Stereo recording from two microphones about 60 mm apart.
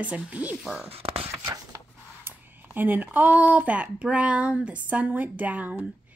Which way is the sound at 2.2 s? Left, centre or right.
Right.